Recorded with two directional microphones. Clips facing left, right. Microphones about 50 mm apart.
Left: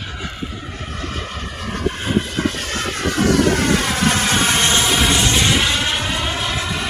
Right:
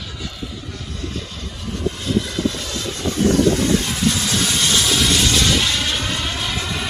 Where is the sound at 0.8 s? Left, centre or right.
Left.